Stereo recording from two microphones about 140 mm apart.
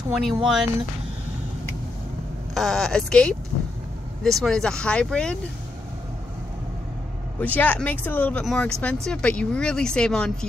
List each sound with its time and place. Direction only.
0.1 s speech: centre (ahead or behind)
2.5 s speech: centre (ahead or behind)
7.3 s speech: 10° left (ahead or behind)